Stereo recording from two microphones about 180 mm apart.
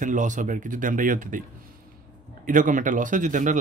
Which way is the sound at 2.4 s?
45° right (ahead or behind).